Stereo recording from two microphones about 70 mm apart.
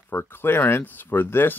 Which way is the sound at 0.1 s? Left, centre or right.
Left.